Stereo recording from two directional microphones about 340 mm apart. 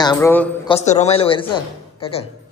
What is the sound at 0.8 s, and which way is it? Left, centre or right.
A woman's voice, centre.